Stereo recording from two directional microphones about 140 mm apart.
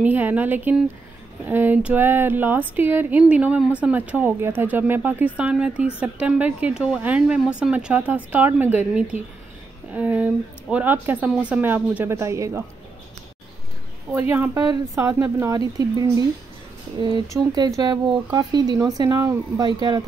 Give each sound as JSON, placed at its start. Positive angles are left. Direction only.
{"t": 0.0, "sound": "speech", "side_deg": -10}
{"t": 14.3, "sound": "speech", "side_deg": -15}